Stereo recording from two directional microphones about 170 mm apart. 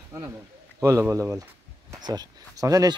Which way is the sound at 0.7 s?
15° right (ahead or behind).